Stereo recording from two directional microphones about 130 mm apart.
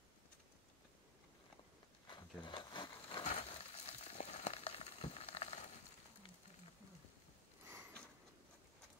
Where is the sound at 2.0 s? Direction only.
40° left (ahead or behind).